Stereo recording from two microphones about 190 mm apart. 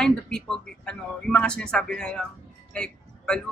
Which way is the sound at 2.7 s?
5° left (ahead or behind).